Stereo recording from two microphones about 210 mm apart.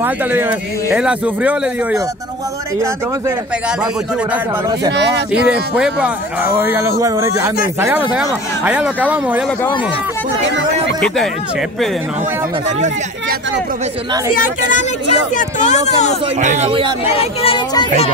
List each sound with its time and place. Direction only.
0.0 s speech: 10° right (ahead or behind)
4.9 s speech: 55° right (ahead or behind)
5.5 s speech: 5° right (ahead or behind)
15.3 s speech: 35° left (ahead or behind)
16.3 s speech: 35° right (ahead or behind)
17.4 s speech: 25° left (ahead or behind)